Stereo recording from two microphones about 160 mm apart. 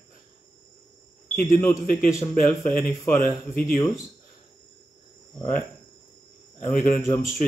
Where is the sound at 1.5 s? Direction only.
15° left (ahead or behind).